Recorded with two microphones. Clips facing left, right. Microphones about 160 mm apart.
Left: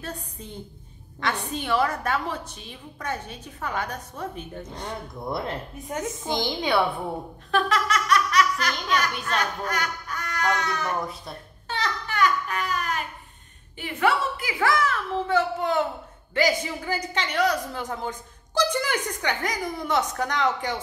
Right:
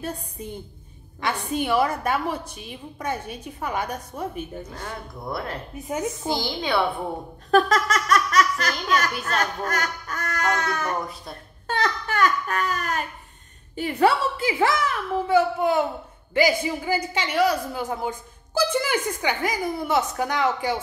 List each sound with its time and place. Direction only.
0.0 s a man's voice: 10° right (ahead or behind)
5.9 s a man's voice: 10° right (ahead or behind)
6.4 s a woman's voice: 15° left (ahead or behind)
7.5 s speech: 40° right (ahead or behind)
11.6 s a sound: 50° right (ahead or behind)
13.7 s a woman's voice: 35° right (ahead or behind); by 20.8 s 10° right (ahead or behind)